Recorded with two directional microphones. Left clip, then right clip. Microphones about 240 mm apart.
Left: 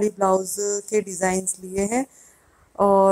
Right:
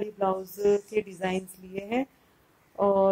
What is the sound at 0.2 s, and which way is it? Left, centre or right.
Speech, left.